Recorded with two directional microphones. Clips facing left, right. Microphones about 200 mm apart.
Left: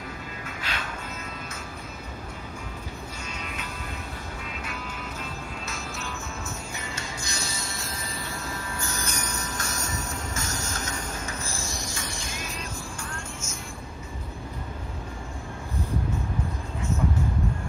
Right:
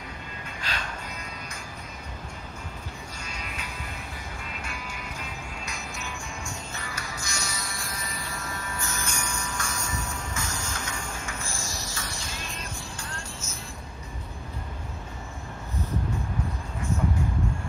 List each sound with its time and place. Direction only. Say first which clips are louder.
0.6 s music: right 1 dB; 5° left (ahead or behind)
3.3 s music: left 1 dB; 5° right (ahead or behind)
6.7 s music: left 1 dB; 25° left (ahead or behind)
9.6 s train: left 1 dB; 40° left (ahead or behind)
10.7 s a sound: left 2 dB; 40° left (ahead or behind)
13.1 s vehicle: left 2 dB; 35° right (ahead or behind)